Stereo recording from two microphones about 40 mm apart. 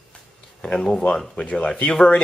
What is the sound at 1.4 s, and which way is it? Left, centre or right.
Speech, left.